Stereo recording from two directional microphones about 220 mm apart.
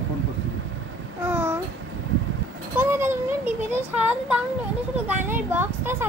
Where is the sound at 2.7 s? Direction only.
10° right (ahead or behind).